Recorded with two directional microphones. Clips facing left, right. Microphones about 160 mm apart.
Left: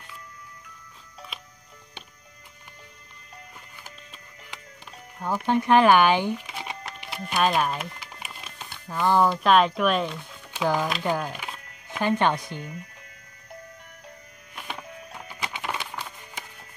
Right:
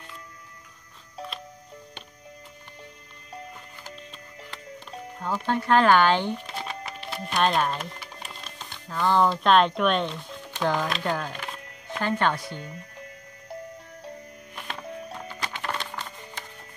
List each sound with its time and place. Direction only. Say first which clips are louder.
5.2 s speech: left 3 dB; 15° left (ahead or behind)
7.0 s music: right 1 dB; 15° left (ahead or behind)
7.3 s speech: even; 5° left (ahead or behind)
14.5 s music: right 1 dB; 5° left (ahead or behind)